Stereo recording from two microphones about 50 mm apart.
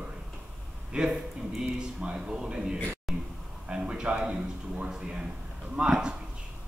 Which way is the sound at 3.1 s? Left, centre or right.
Centre.